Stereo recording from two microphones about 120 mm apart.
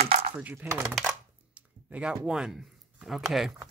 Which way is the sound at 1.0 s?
10° right (ahead or behind).